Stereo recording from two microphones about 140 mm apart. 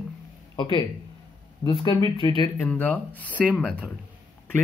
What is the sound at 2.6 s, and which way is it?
Speech, 15° left (ahead or behind).